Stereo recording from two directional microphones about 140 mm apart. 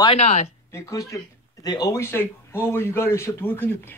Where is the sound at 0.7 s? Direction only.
25° left (ahead or behind).